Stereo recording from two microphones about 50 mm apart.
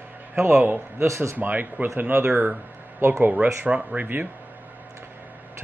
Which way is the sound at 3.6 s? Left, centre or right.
Right.